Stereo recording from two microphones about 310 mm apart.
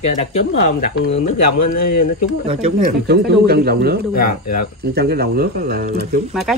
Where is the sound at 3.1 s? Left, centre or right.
Right.